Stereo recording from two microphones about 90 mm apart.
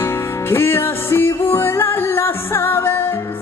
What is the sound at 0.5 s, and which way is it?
Music, 25° left (ahead or behind).